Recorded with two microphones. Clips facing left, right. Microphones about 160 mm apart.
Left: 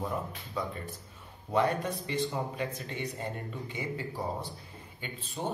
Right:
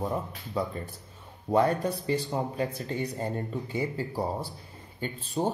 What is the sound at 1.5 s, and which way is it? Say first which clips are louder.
A man's voice: right 4 dB; 40° right (ahead or behind).